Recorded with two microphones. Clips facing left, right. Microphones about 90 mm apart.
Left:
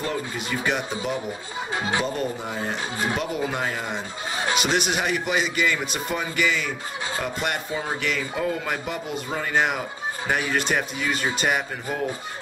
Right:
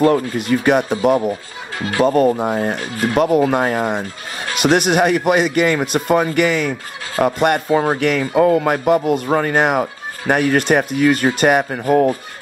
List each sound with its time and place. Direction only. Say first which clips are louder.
0.0 s speech: right 13 dB; 55° right (ahead or behind)
1.8 s speech: right 8 dB; 20° left (ahead or behind)
2.0 s speech: right 13 dB; 55° right (ahead or behind)